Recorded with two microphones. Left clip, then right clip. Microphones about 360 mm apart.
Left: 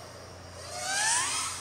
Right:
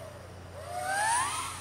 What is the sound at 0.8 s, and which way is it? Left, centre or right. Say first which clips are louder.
Vehicle: right 1 dB; centre.